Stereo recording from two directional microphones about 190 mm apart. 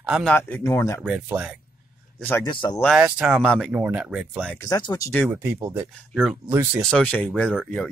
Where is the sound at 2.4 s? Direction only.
25° left (ahead or behind).